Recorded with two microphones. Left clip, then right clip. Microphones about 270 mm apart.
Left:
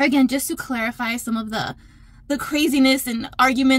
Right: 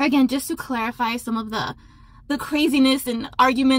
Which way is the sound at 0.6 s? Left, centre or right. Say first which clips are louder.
Right 1 dB; centre.